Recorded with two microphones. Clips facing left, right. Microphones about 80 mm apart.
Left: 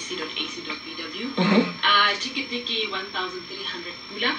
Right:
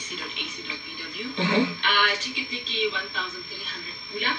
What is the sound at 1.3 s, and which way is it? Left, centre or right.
Speech, left.